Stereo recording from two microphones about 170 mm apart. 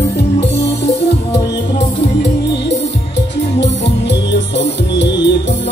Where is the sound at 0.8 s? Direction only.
90° left.